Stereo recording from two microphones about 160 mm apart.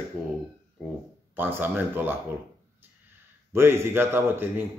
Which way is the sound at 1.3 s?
10° right (ahead or behind).